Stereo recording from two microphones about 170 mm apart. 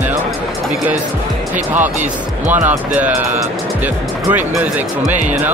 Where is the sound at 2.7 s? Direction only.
10° right (ahead or behind).